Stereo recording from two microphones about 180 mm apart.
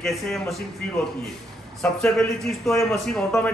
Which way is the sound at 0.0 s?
Centre (ahead or behind).